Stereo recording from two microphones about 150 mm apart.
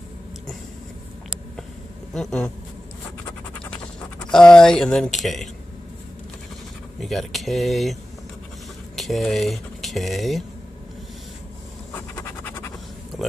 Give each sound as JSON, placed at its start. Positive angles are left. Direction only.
{"t": 2.1, "sound": "speech", "side_deg": 5}
{"t": 4.3, "sound": "speech", "side_deg": 5}
{"t": 7.0, "sound": "speech", "side_deg": 0}
{"t": 11.9, "sound": "scratch", "side_deg": 15}